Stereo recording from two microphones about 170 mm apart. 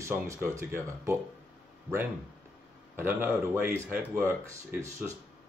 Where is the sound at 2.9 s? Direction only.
15° right (ahead or behind).